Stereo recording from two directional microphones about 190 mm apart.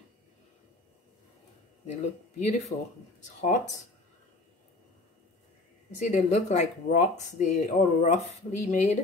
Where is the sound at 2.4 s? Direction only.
35° left (ahead or behind).